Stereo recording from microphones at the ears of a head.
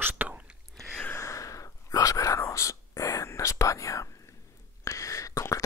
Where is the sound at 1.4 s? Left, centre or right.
Left.